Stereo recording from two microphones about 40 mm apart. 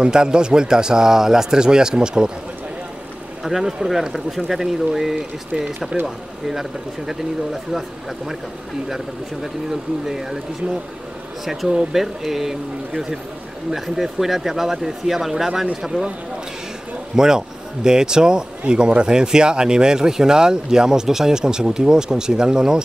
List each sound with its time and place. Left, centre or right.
0.0 s a man's voice: right
3.4 s speech: centre
5.5 s a man's voice: centre
6.0 s speech: centre
8.8 s speech: centre
11.9 s speech: centre
17.1 s speech: centre